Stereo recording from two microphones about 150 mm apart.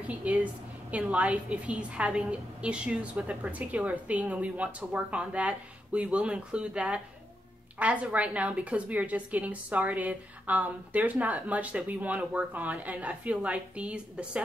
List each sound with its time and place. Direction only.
0.0 s a woman's voice: 10° right (ahead or behind)